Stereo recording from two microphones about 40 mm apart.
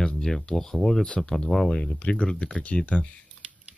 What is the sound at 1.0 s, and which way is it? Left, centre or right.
Speech, left.